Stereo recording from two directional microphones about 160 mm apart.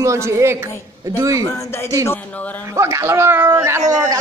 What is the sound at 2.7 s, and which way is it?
Speech, 20° right (ahead or behind).